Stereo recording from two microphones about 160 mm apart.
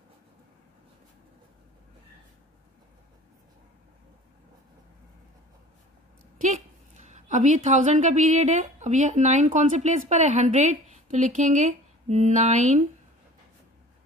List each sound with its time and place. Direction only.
7.1 s a woman's voice: 50° right (ahead or behind)